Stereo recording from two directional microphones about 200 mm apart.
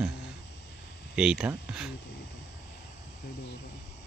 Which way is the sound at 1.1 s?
5° right (ahead or behind).